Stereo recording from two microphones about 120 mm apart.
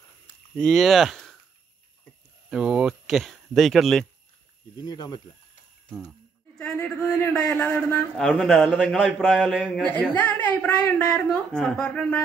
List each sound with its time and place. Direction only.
0.6 s speech: 5° left (ahead or behind)
2.5 s speech: 5° right (ahead or behind)
4.7 s speech: 35° left (ahead or behind)
6.6 s a sound: 5° left (ahead or behind)
7.5 s a man's voice: 10° left (ahead or behind); by 9.8 s 5° right (ahead or behind)
9.8 s a man's voice: 10° left (ahead or behind)